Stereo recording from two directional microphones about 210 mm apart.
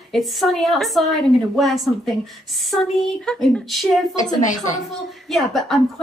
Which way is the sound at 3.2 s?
Centre (ahead or behind).